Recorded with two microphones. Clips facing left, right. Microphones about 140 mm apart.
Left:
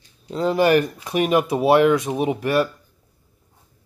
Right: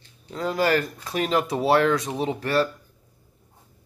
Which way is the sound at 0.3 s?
25° left (ahead or behind).